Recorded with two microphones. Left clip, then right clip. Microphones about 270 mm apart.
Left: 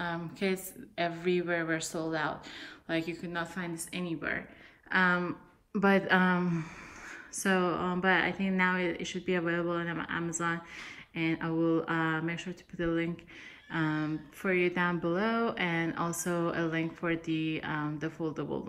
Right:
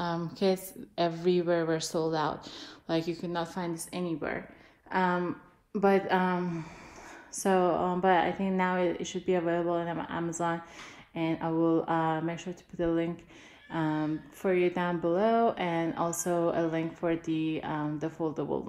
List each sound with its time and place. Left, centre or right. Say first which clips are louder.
0.0 s a woman's voice: right 4 dB; centre
3.4 s a woman's voice: right 3 dB; centre